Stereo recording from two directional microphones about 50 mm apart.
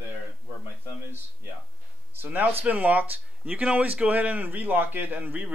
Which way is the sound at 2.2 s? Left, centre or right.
Right.